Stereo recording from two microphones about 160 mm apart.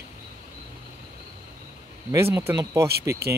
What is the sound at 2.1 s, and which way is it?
Speech, 15° right (ahead or behind).